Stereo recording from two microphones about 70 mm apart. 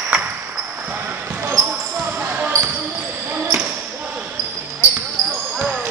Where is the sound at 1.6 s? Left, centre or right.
Right.